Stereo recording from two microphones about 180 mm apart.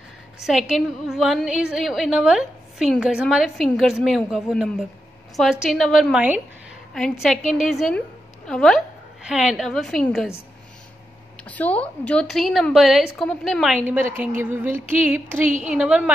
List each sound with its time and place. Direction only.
0.5 s a woman's voice: centre (ahead or behind)
8.5 s a woman's voice: 5° left (ahead or behind)
11.4 s a woman's voice: 10° left (ahead or behind); by 14.0 s 10° right (ahead or behind)
14.4 s music: 10° right (ahead or behind)
15.4 s a woman's voice: 45° right (ahead or behind)
15.7 s music: 5° right (ahead or behind)